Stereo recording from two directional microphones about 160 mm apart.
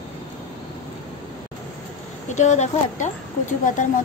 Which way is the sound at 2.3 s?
45° left (ahead or behind).